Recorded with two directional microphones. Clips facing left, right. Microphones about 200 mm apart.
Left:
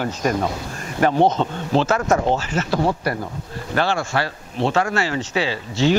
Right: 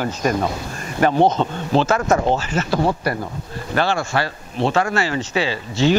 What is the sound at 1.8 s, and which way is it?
Speech, 25° right (ahead or behind).